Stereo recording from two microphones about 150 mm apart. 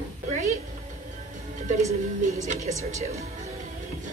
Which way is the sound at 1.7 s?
50° right (ahead or behind).